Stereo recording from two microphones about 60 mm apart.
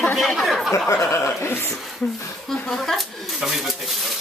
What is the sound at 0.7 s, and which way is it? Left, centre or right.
Speech, left.